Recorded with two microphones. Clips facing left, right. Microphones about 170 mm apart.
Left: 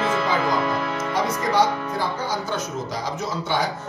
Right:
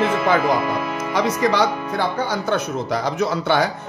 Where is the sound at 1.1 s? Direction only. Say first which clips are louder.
Right 3 dB; 75° right (ahead or behind).